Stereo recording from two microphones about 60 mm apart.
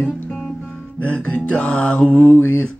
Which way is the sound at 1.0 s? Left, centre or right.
Left.